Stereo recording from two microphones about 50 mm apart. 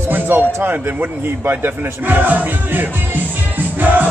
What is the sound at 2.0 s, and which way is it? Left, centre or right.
Music, right.